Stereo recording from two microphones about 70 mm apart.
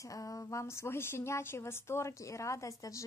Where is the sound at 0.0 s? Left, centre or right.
Left.